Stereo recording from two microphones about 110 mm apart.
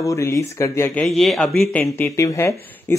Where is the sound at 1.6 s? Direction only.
20° left (ahead or behind).